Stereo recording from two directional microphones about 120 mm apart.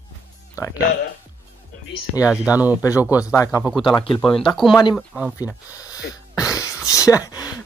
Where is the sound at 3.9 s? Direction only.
45° left (ahead or behind).